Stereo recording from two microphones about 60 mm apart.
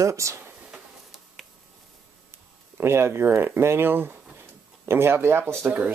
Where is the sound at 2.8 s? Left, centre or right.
Right.